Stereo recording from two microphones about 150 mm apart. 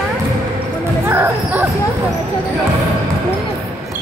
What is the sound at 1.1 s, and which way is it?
Speech, 15° right (ahead or behind).